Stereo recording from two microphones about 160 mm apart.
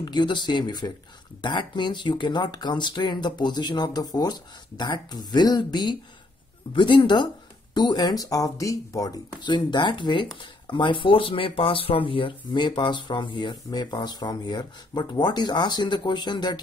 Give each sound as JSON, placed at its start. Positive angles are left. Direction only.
{"t": 0.0, "sound": "speech", "side_deg": 30}